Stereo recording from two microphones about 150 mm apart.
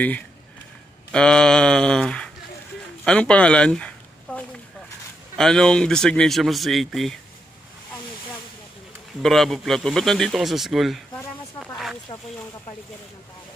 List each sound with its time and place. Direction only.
1.1 s speech: 5° left (ahead or behind)
9.2 s speech: centre (ahead or behind)
12.1 s speech: 35° left (ahead or behind)